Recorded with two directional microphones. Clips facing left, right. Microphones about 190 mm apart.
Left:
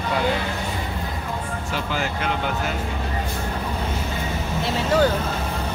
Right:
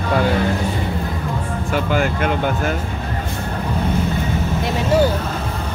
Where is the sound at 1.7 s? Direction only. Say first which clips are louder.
Right 8 dB; 55° right (ahead or behind).